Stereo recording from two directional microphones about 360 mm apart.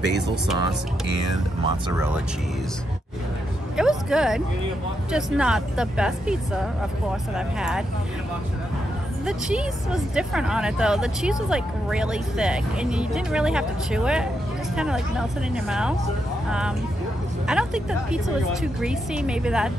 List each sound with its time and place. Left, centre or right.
1.0 s speech: left
1.9 s speech: centre
3.7 s a sound: centre
5.1 s speech: centre
9.2 s speech: centre